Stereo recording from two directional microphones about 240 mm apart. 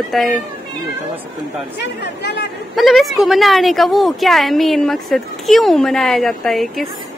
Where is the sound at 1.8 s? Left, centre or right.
Left.